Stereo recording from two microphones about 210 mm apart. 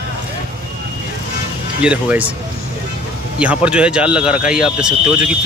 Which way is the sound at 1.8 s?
5° right (ahead or behind).